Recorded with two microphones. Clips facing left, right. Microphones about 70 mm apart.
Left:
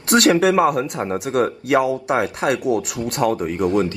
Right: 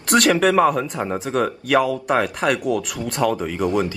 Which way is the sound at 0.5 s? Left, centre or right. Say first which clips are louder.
Even; centre.